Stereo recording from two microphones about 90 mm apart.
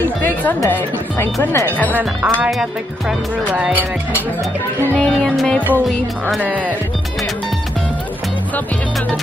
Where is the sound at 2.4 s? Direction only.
5° right (ahead or behind).